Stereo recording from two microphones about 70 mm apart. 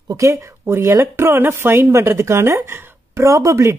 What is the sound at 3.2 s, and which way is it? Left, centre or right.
Speech, right.